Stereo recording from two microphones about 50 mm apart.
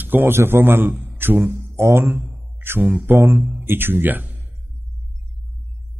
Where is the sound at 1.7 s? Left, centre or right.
Right.